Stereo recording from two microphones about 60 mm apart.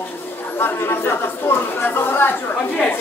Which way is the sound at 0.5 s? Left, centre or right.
Left.